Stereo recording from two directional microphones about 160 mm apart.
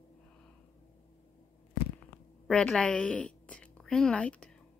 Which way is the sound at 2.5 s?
5° left (ahead or behind).